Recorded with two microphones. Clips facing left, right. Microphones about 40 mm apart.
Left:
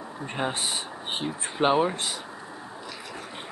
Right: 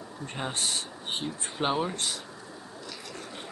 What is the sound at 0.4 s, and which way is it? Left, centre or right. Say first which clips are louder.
Speech: left 3 dB; centre.